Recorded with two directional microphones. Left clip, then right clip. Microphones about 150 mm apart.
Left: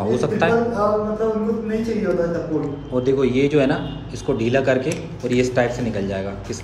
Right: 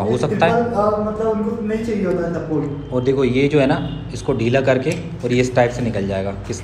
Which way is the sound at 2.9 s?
15° left (ahead or behind).